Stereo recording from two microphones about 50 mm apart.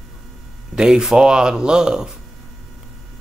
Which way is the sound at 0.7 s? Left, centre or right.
Centre.